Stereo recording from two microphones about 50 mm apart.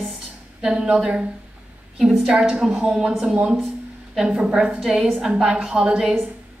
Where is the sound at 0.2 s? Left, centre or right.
Centre.